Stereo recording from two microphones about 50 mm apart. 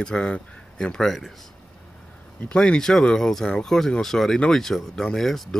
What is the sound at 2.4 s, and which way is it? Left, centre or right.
Speech, left.